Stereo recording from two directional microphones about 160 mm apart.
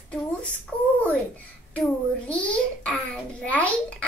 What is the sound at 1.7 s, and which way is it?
A child's voice, 5° left (ahead or behind).